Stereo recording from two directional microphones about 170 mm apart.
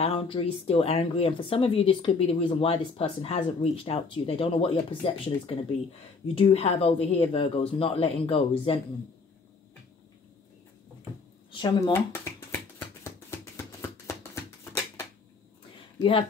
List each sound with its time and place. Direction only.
0.0 s speech: 35° left (ahead or behind)
11.9 s music: 15° left (ahead or behind)
16.0 s speech: 30° left (ahead or behind)